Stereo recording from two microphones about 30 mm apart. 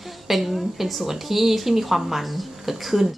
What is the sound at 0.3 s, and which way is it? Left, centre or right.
Speech, centre.